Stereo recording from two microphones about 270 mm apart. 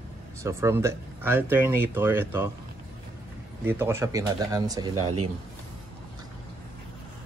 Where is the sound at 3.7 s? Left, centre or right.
Centre.